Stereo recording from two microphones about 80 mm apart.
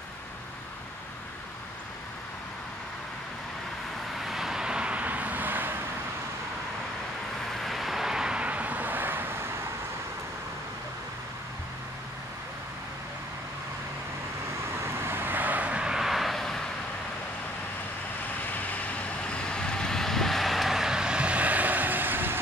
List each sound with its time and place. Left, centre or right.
4.2 s vehicle: centre; by 5.8 s right
7.6 s vehicle: centre; by 9.5 s right
14.8 s vehicle: right; by 16.6 s centre
18.5 s vehicle: centre; by 22.4 s right